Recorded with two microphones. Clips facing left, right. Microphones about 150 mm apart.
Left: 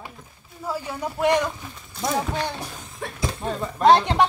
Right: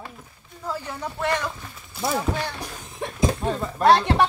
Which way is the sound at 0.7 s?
15° left (ahead or behind).